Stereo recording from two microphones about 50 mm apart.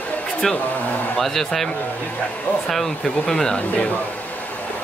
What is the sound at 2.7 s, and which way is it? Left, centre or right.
Speech, centre.